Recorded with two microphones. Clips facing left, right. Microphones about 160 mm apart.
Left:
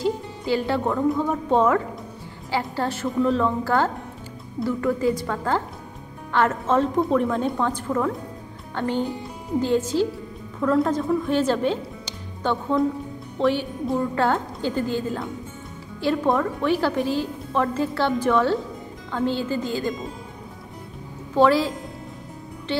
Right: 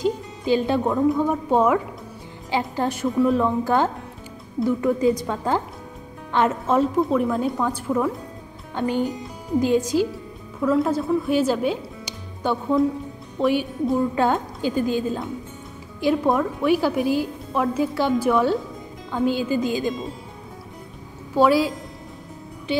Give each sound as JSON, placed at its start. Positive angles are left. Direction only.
{"t": 0.0, "sound": "a woman's voice", "side_deg": -20}
{"t": 7.0, "sound": "a woman's voice", "side_deg": -5}
{"t": 21.4, "sound": "a woman's voice", "side_deg": -10}